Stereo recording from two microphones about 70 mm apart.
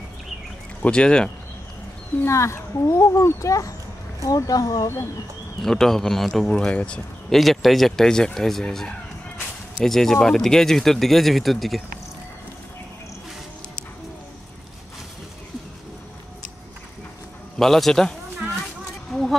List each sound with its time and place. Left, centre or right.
0.8 s speech: centre
2.2 s a child's voice: left
5.6 s speech: centre
7.2 s speech: centre
17.6 s speech: centre
19.1 s a sound: centre